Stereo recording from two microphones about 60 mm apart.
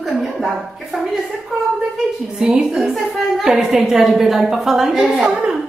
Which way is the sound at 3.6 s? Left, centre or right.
Centre.